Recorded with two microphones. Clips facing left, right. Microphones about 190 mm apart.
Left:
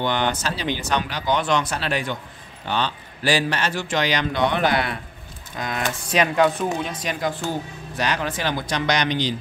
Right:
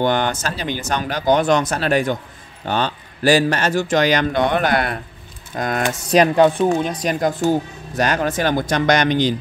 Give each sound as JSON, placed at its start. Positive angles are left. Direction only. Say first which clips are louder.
{"t": 0.0, "sound": "a man's voice", "louder": "right 4 dB", "side_deg": -45}